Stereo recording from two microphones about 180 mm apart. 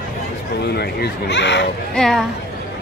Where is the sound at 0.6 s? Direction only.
65° left (ahead or behind).